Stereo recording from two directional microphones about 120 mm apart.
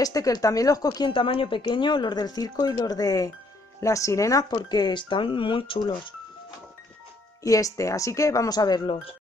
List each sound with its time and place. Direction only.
0.0 s a woman's voice: 30° left (ahead or behind)
7.4 s speech: 30° left (ahead or behind); by 9.1 s 45° left (ahead or behind)